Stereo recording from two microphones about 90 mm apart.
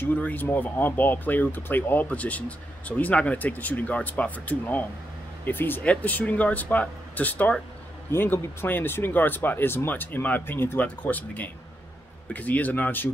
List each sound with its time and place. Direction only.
0.0 s speech: 20° left (ahead or behind)